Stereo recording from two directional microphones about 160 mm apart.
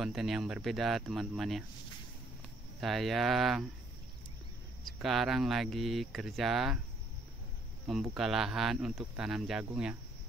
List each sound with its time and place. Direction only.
0.0 s speech: centre (ahead or behind)
2.8 s speech: centre (ahead or behind)
4.8 s speech: centre (ahead or behind)
7.8 s speech: centre (ahead or behind)